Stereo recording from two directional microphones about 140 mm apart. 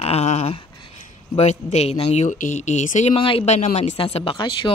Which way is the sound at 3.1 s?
40° left (ahead or behind).